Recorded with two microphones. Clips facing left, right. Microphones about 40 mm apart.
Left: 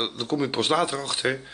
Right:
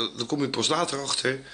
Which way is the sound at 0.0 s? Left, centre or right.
Centre.